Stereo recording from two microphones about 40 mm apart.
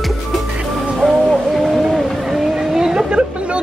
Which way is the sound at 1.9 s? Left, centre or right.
Centre.